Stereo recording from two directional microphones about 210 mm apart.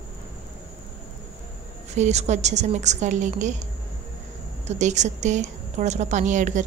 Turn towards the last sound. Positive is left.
turn(degrees=-35)  # may be behind; listen again after turning